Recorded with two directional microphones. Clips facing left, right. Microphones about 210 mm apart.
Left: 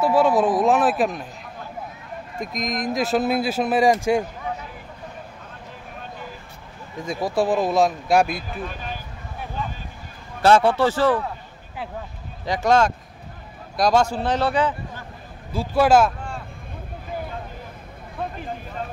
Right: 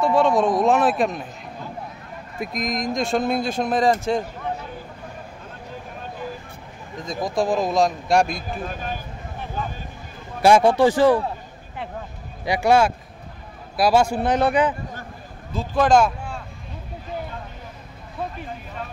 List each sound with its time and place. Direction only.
0.0 s speech: 5° left (ahead or behind)
2.4 s speech: centre (ahead or behind)
7.0 s speech: 10° left (ahead or behind)
8.4 s speech: 45° right (ahead or behind)
10.4 s a man's voice: 15° right (ahead or behind)
12.4 s a man's voice: 10° right (ahead or behind)
15.5 s speech: 10° left (ahead or behind)